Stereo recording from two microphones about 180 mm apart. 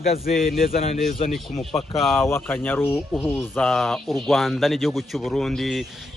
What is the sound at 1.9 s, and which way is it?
Speech, centre (ahead or behind).